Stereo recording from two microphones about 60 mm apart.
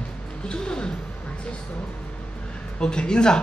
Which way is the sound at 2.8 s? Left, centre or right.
Centre.